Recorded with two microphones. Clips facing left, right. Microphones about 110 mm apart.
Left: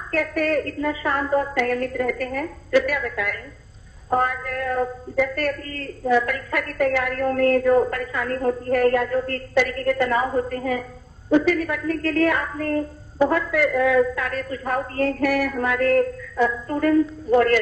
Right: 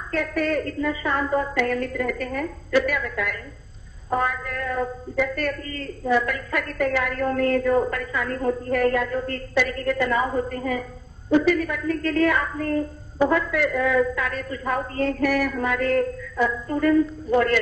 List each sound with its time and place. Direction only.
0.1 s a woman's voice: 40° left (ahead or behind)